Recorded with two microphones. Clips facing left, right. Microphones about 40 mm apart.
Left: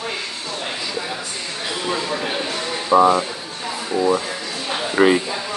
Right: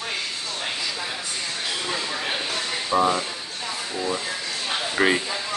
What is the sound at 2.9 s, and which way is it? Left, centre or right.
Speech, left.